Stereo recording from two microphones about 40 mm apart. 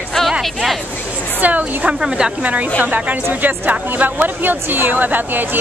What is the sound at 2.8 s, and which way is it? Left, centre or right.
Speech, right.